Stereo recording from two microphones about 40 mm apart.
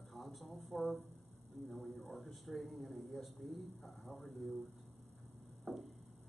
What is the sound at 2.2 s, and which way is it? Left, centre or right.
A woman's voice, centre.